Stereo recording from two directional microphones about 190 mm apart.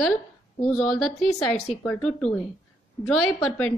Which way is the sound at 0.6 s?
Centre (ahead or behind).